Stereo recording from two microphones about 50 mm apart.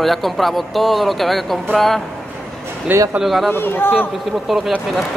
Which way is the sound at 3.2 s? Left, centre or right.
Centre.